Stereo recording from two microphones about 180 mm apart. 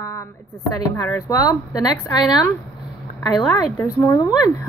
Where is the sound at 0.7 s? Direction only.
15° left (ahead or behind).